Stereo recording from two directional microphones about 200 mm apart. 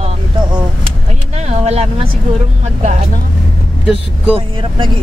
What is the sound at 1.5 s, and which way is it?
Speech, 30° right (ahead or behind).